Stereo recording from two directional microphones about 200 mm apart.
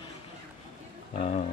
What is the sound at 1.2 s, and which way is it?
Speech, 35° left (ahead or behind).